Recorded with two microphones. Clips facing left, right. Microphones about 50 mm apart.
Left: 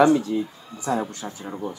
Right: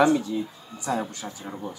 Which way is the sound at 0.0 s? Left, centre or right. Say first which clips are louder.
Left 3 dB; left.